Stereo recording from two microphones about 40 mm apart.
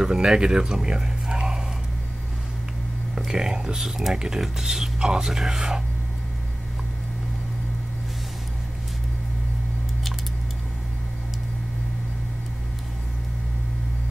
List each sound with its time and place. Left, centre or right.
0.0 s speech: centre
3.3 s speech: centre